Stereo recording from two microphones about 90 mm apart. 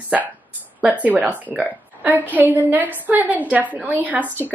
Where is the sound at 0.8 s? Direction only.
15° right (ahead or behind).